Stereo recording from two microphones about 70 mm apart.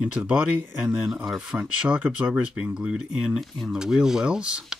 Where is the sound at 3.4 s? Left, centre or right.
Centre.